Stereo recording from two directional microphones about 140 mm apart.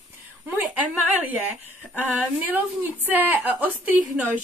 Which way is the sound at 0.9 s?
10° right (ahead or behind).